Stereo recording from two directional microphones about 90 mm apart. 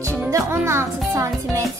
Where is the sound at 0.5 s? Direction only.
30° right (ahead or behind).